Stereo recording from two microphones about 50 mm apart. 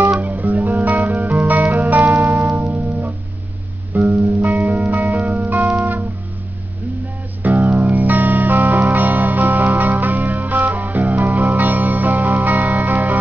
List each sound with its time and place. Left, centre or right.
0.2 s music: right
2.6 s music: right
4.1 s music: right
5.8 s music: right
7.4 s music: right